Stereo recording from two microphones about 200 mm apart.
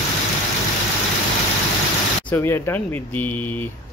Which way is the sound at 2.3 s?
10° left (ahead or behind).